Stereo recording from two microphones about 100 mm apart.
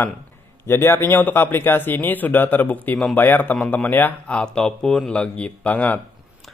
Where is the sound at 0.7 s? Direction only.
25° left (ahead or behind).